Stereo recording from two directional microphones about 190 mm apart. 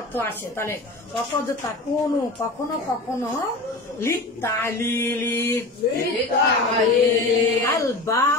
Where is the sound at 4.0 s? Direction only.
15° left (ahead or behind).